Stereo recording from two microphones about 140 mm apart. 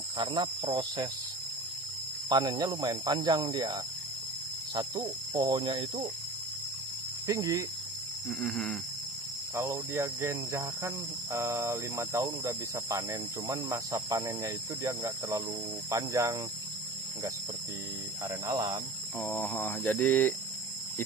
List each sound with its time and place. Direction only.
0.2 s speech: 30° right (ahead or behind)
2.2 s speech: 30° right (ahead or behind)
7.2 s speech: 25° right (ahead or behind)
8.3 s a sound: 5° left (ahead or behind)
9.6 s speech: 20° right (ahead or behind)
18.5 s speech: 20° right (ahead or behind)
19.1 s a sound: 15° left (ahead or behind)